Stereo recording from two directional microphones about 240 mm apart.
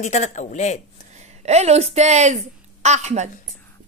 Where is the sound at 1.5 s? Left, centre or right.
Right.